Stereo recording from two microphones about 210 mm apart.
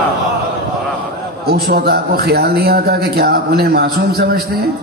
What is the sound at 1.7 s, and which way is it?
A man's voice, 45° right (ahead or behind).